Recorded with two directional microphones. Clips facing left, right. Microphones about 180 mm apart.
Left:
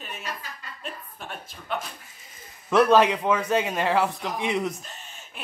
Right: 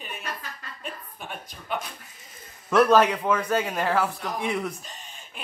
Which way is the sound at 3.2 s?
10° left (ahead or behind).